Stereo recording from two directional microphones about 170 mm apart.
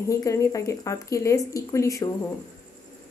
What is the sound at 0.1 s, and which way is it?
Speech, 20° left (ahead or behind).